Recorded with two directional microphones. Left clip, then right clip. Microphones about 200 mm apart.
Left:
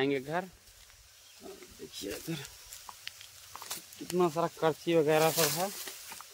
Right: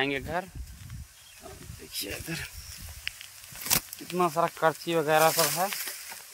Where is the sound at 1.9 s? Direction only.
10° right (ahead or behind).